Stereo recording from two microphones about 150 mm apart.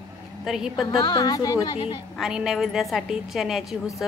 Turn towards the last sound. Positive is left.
turn(degrees=0)  # may be behind; listen again after turning